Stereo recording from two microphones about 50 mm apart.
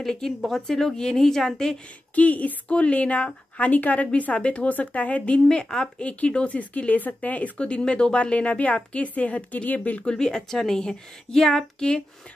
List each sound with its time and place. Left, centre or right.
0.0 s a woman's voice: centre
2.1 s speech: left
10.0 s a woman's voice: centre